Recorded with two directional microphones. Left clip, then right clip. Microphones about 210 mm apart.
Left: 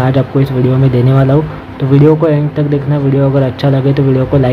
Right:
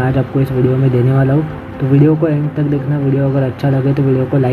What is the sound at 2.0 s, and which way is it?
Speech, 15° left (ahead or behind).